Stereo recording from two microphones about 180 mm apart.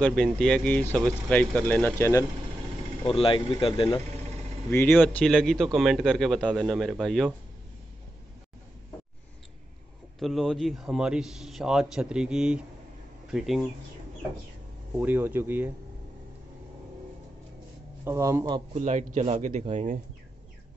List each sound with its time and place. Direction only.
0.0 s speech: 5° left (ahead or behind)
3.1 s speech: 30° left (ahead or behind)
4.6 s a man's voice: 10° left (ahead or behind)
10.1 s a man's voice: centre (ahead or behind)
15.0 s speech: 10° right (ahead or behind)
18.0 s speech: 15° right (ahead or behind)
18.7 s a man's voice: 40° right (ahead or behind)